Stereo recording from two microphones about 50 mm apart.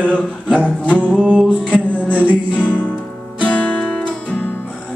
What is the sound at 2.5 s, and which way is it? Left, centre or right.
Music, left.